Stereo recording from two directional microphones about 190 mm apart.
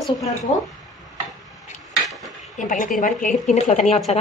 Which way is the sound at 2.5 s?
40° left (ahead or behind).